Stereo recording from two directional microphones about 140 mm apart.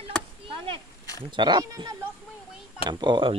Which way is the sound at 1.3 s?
30° right (ahead or behind).